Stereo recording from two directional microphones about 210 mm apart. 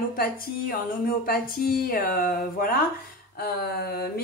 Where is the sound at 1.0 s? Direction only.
45° left (ahead or behind).